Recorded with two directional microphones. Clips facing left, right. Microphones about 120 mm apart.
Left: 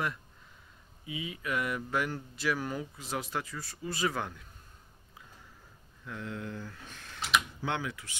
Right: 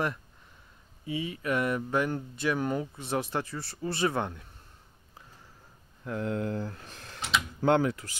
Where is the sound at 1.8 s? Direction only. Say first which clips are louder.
Right 4 dB; 25° right (ahead or behind).